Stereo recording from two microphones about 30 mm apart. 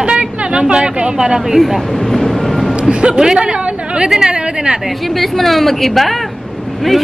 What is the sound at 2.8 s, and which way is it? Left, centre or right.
Music, right.